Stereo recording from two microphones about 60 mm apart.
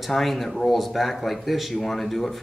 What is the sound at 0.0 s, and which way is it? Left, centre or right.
Speech, centre.